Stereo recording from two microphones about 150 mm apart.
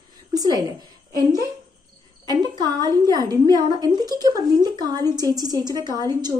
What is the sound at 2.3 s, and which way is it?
A woman's voice, 25° right (ahead or behind).